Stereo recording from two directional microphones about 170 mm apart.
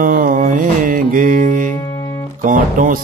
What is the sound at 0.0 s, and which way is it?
Music, 55° right (ahead or behind).